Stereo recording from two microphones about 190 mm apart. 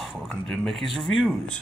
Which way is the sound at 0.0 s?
Centre (ahead or behind).